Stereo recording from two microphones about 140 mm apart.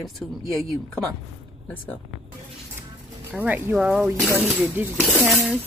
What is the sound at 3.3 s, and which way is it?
Speech, 10° right (ahead or behind).